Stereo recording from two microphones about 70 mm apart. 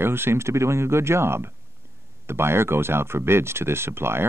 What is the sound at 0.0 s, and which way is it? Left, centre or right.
Speech, right.